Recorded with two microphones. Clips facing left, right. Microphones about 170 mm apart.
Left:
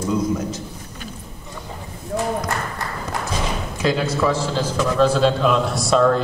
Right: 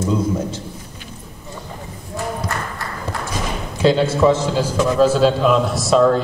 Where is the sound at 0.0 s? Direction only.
30° right (ahead or behind).